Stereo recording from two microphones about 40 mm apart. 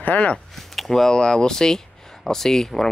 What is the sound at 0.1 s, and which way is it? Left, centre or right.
Speech, left.